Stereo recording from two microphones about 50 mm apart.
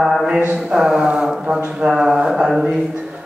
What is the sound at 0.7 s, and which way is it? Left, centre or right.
A man's voice, centre.